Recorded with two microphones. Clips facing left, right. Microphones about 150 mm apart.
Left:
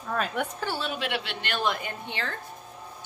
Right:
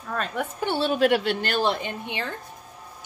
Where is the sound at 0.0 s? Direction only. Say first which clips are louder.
Even; 5° left (ahead or behind).